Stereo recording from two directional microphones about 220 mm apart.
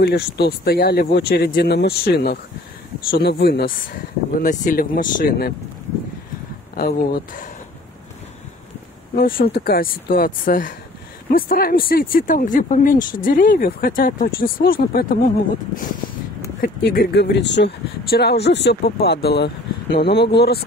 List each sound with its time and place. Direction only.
0.0 s speech: 45° left (ahead or behind)
6.7 s speech: 40° left (ahead or behind)
9.1 s speech: 40° left (ahead or behind)
16.6 s speech: 40° left (ahead or behind)